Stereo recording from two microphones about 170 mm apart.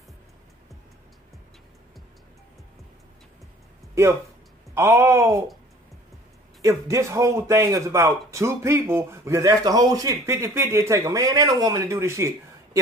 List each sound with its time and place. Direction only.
3.9 s speech: 15° right (ahead or behind)
6.6 s speech: 15° right (ahead or behind)